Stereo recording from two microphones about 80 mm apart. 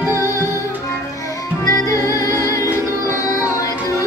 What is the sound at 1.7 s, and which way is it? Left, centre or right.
Music, left.